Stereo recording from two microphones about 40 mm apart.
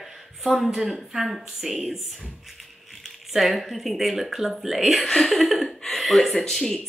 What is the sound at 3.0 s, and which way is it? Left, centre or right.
Speech, centre.